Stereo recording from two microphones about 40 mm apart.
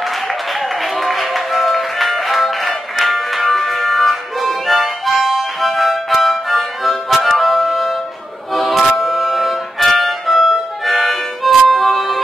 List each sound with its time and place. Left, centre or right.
0.9 s music: centre